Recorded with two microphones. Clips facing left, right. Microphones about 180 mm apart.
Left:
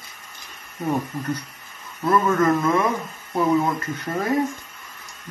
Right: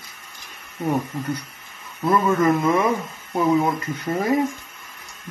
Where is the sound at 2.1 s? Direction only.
10° right (ahead or behind).